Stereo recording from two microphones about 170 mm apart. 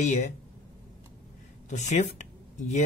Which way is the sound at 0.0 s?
45° left (ahead or behind).